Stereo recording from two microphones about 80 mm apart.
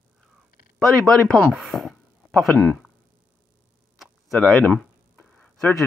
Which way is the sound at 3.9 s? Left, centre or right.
Centre.